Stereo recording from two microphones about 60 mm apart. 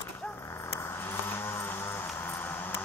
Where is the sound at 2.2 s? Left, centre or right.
Left.